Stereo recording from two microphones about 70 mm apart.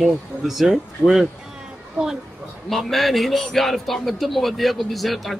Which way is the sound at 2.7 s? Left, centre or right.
Centre.